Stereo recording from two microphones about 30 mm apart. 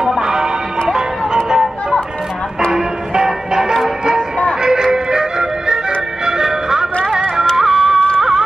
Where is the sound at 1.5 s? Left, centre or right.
Centre.